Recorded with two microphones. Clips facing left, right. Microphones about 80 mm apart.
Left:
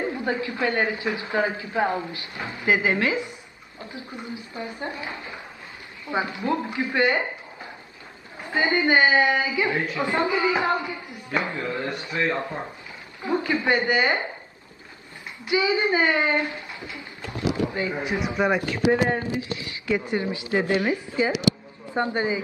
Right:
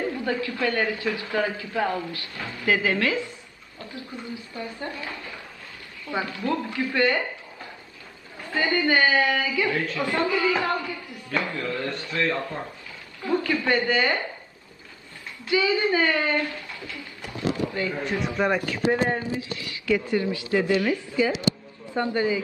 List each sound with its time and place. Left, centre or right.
0.0 s a woman's voice: left
15.4 s a woman's voice: left
18.2 s a man's voice: centre
19.6 s a woman's voice: left